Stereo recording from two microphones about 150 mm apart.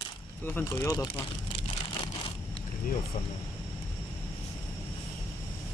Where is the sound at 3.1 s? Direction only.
55° left (ahead or behind).